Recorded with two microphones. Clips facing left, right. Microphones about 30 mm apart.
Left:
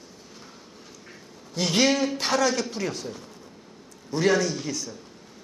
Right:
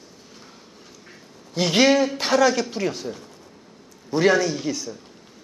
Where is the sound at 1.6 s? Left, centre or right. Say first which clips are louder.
Right 5 dB; centre.